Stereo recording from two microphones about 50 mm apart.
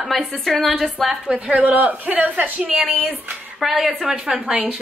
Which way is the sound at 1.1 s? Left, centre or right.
Right.